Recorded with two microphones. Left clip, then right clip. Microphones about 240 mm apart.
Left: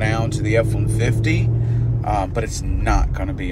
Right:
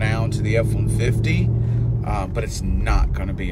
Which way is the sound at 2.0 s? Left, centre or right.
Centre.